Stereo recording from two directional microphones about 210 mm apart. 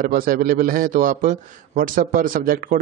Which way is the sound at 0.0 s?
40° right (ahead or behind).